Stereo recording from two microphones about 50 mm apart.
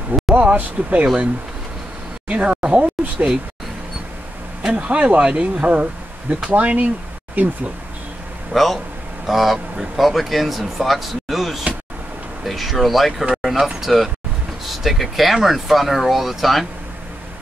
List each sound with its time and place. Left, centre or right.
0.4 s speech: right
4.7 s speech: right
8.5 s speech: centre